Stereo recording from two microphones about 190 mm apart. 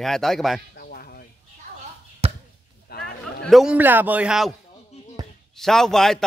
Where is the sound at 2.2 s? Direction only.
30° right (ahead or behind).